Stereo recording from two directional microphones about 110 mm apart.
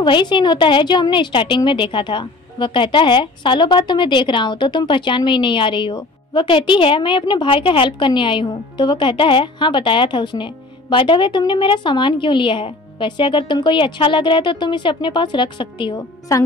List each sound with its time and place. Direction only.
0.0 s a woman's voice: 45° left (ahead or behind)